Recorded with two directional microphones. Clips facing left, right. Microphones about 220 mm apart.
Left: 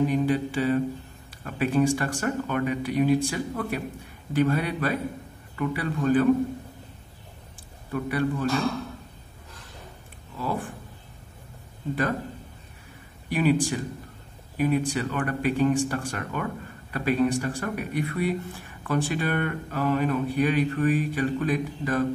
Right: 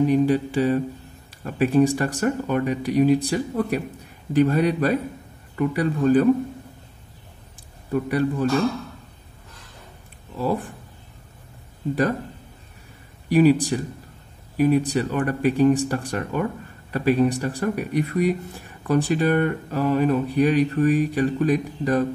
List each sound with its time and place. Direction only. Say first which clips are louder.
0.1 s speech: right 5 dB; 40° right (ahead or behind)
7.9 s speech: right 4 dB; 35° right (ahead or behind)
10.4 s speech: right 6 dB; 40° right (ahead or behind)
13.3 s speech: right 6 dB; 40° right (ahead or behind)